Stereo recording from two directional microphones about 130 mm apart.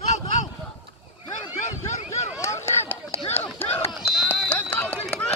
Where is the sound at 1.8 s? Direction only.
60° left (ahead or behind).